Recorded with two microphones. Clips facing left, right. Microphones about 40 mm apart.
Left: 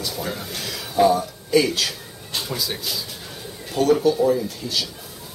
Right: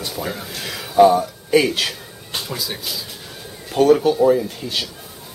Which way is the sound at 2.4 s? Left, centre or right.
Centre.